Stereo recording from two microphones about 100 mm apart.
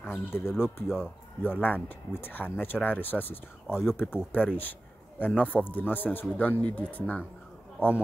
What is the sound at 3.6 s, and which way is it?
Speech, 5° right (ahead or behind).